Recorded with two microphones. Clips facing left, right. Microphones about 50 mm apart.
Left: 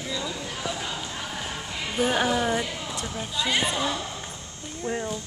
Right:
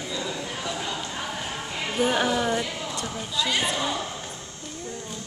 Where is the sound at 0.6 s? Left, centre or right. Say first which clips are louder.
Even; centre.